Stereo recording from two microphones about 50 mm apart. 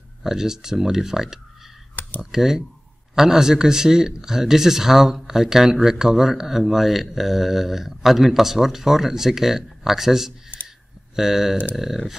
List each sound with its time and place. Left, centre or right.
0.2 s speech: centre
2.0 s computer keyboard: left
2.3 s speech: centre